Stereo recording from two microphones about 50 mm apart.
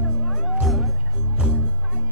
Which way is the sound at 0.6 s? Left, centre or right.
Centre.